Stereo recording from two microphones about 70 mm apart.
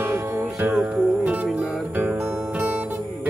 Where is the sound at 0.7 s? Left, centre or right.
Centre.